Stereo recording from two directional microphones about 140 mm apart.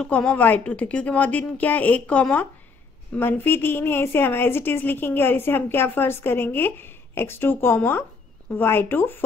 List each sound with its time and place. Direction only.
0.0 s a woman's voice: 5° left (ahead or behind)